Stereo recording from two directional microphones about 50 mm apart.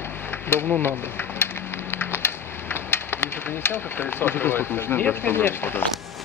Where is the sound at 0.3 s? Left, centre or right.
Left.